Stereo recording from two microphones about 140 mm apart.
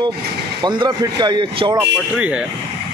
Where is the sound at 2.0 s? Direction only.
10° right (ahead or behind).